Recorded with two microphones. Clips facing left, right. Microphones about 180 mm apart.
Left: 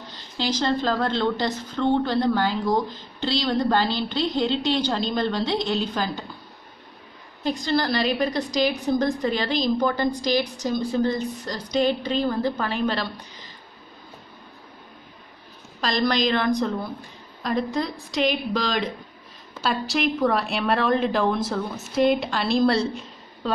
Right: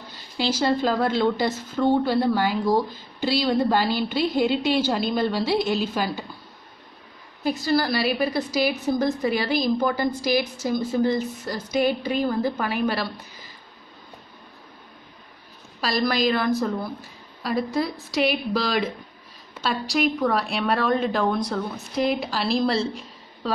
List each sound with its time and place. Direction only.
0.1 s a woman's voice: 10° right (ahead or behind)
7.4 s a woman's voice: 5° right (ahead or behind)
15.8 s a woman's voice: 5° right (ahead or behind)